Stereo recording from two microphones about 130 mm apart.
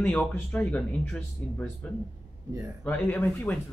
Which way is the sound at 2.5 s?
25° right (ahead or behind).